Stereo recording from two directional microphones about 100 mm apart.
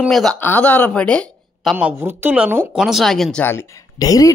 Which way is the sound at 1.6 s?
Centre (ahead or behind).